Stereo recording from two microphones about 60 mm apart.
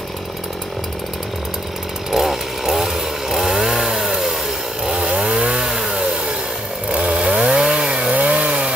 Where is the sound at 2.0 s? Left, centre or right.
Centre.